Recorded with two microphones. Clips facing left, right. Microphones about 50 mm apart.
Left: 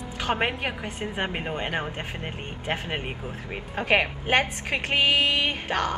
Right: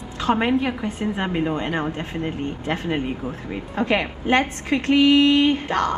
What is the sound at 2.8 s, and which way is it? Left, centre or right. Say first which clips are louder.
A woman's voice: right 7 dB; left.